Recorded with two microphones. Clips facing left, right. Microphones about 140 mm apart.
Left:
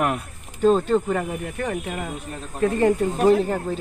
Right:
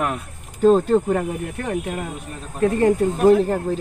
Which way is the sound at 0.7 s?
15° right (ahead or behind).